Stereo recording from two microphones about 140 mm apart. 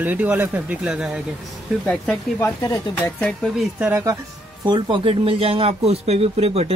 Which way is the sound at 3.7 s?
15° right (ahead or behind).